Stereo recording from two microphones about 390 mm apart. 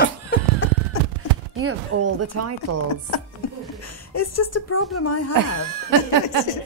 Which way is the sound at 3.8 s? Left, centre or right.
Left.